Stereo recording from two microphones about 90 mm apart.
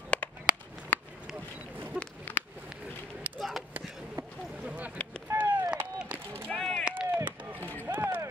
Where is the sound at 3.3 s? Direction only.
Centre (ahead or behind).